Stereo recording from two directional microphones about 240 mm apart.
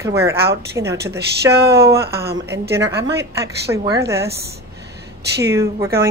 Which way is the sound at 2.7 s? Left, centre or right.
Centre.